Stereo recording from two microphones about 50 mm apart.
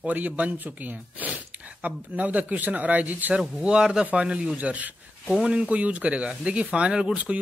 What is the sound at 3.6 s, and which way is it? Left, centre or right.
A man's voice, centre.